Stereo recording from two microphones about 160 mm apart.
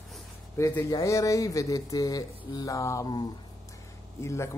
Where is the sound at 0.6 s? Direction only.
20° left (ahead or behind).